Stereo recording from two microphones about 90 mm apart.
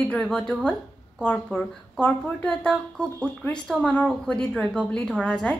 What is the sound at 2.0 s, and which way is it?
Speech, 15° left (ahead or behind).